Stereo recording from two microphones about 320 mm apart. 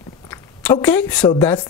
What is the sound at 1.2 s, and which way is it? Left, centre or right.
Speech, centre.